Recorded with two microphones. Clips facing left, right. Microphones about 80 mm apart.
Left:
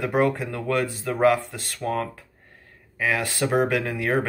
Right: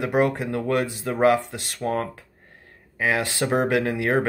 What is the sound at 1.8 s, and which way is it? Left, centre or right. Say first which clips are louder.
Speech: right 1 dB; right.